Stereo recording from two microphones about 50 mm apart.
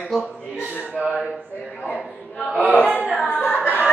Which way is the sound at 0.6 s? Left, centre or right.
Right.